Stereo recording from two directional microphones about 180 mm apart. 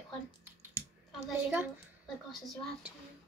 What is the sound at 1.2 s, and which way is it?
Speech, 10° right (ahead or behind).